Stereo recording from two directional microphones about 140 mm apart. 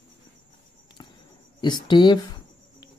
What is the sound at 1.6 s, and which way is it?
Speech, 30° left (ahead or behind).